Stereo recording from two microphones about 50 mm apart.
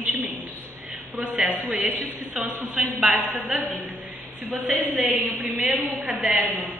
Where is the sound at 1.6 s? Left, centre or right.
Right.